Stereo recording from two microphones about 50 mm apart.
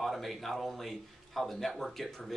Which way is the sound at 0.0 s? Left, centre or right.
Centre.